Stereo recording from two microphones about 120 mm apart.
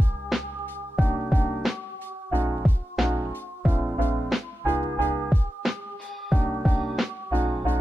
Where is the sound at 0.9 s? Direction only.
15° left (ahead or behind).